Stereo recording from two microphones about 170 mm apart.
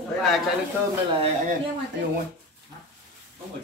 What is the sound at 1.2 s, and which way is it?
Speech, 45° right (ahead or behind).